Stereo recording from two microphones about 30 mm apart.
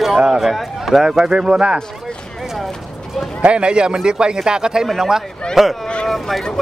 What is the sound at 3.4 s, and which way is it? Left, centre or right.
Speech, right.